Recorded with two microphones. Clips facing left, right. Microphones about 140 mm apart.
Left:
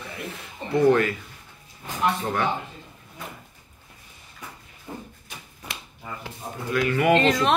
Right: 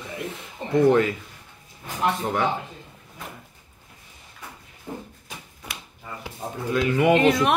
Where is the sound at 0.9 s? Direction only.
15° right (ahead or behind).